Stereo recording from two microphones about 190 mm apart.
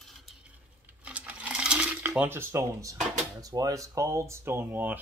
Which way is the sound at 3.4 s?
20° right (ahead or behind).